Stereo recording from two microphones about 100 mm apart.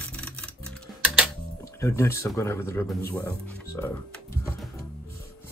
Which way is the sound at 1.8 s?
25° left (ahead or behind).